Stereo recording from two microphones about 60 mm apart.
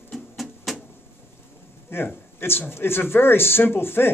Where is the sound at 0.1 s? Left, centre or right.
Centre.